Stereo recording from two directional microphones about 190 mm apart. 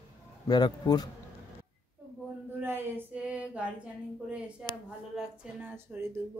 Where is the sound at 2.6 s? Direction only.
10° right (ahead or behind).